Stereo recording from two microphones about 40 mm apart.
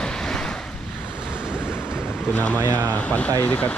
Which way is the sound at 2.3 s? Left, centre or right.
Left.